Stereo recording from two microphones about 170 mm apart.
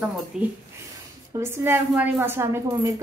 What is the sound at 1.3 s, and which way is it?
Speech, 15° right (ahead or behind).